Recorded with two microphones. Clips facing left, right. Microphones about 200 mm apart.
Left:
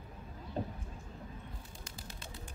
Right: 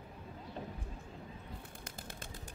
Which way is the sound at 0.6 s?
35° left (ahead or behind).